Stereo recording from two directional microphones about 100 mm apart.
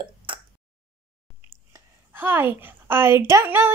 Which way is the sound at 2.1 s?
20° right (ahead or behind).